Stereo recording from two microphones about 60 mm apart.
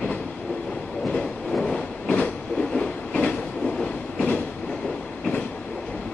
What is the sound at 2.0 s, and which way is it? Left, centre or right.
Train, left.